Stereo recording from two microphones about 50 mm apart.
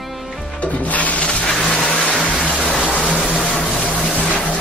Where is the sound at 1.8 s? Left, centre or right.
Left.